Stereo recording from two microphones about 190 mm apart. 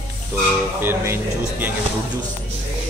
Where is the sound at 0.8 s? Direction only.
10° right (ahead or behind).